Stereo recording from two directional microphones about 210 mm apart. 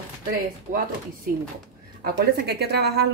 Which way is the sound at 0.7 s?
35° right (ahead or behind).